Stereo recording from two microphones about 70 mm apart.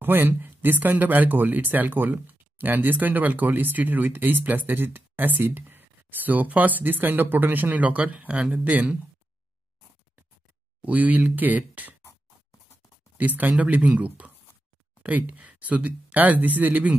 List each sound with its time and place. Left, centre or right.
0.0 s speech: right
10.8 s speech: right
13.4 s speech: right